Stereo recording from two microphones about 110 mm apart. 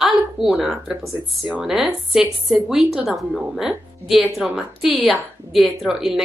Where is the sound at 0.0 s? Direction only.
Centre (ahead or behind).